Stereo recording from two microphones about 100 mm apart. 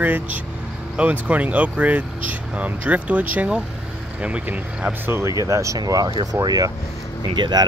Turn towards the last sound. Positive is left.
turn(degrees=-45)  # may be behind; listen again after turning